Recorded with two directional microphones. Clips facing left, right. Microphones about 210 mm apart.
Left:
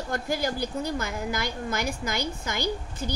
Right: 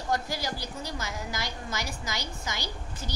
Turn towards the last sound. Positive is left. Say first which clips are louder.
# left 8 dB
turn(degrees=55)  # may be behind; listen again after turning